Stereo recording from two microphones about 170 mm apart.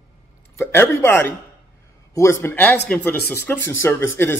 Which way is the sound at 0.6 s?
15° left (ahead or behind).